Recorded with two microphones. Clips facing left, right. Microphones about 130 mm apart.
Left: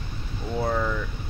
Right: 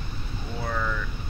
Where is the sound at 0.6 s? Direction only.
20° left (ahead or behind).